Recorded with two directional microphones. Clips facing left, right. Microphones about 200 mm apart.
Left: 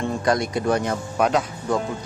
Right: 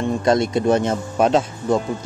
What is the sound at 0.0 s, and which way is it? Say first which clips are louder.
Speech: right 4 dB; 25° right (ahead or behind).